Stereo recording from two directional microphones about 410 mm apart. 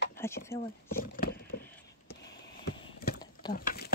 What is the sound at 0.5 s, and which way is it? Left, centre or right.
Speech, centre.